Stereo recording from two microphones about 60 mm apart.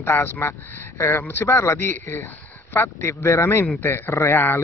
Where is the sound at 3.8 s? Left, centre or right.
Left.